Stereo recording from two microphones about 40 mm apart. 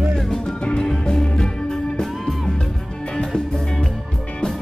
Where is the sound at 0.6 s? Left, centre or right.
Left.